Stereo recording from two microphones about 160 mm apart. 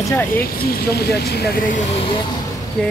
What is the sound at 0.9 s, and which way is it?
Speech, 90° left.